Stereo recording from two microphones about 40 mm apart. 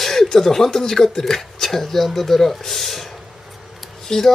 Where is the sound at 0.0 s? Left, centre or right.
Centre.